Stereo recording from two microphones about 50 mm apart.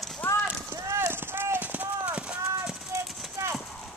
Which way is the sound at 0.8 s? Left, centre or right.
Right.